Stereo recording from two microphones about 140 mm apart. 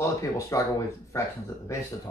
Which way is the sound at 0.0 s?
20° left (ahead or behind).